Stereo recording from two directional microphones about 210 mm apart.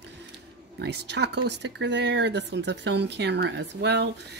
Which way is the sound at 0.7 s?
55° right (ahead or behind).